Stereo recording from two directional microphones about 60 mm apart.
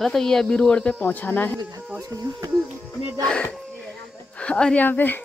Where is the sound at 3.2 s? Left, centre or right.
Centre.